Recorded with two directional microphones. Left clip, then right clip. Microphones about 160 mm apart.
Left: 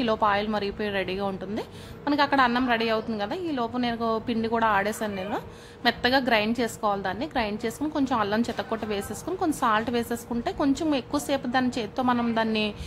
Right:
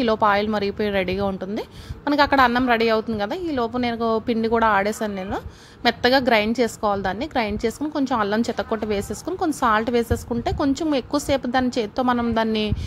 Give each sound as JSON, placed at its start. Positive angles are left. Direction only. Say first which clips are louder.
{"t": 0.0, "sound": "a woman's voice", "louder": "right 5 dB", "side_deg": -35}